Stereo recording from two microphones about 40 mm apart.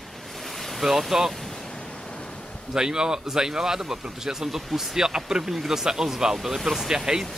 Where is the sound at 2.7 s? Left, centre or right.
Centre.